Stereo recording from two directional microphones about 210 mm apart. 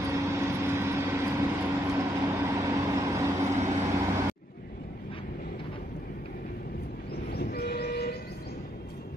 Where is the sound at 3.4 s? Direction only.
35° right (ahead or behind).